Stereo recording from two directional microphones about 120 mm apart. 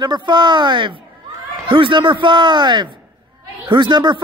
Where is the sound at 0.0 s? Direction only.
40° right (ahead or behind).